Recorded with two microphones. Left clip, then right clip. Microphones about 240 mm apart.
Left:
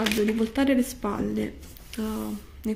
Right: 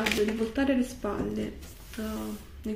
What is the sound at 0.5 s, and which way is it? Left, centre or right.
Speech, left.